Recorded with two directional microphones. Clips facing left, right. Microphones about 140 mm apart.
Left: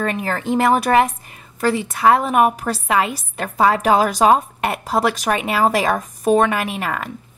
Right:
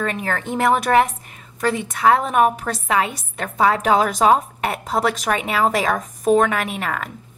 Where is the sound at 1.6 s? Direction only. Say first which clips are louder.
Left 2 dB; 5° left (ahead or behind).